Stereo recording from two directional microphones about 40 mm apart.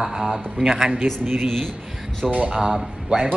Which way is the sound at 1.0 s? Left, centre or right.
Right.